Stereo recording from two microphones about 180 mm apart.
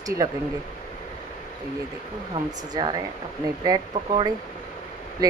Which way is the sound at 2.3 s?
25° right (ahead or behind).